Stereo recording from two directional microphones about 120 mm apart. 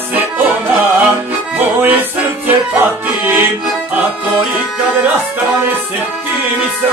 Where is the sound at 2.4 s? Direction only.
15° right (ahead or behind).